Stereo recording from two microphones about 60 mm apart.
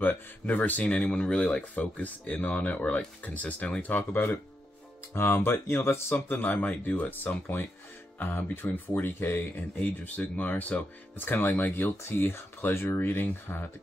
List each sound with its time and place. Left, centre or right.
0.0 s speech: left